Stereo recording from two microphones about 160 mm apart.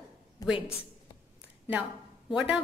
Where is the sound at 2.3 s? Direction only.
5° right (ahead or behind).